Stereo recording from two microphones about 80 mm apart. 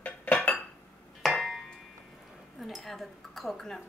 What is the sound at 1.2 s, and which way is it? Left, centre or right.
Hammer, centre.